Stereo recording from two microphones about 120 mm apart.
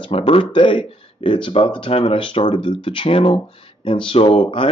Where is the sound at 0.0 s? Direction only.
50° left (ahead or behind).